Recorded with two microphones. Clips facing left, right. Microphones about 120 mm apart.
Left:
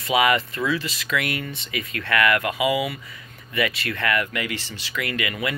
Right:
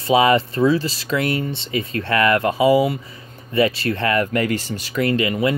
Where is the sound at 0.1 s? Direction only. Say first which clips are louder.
Right 5 dB; 30° right (ahead or behind).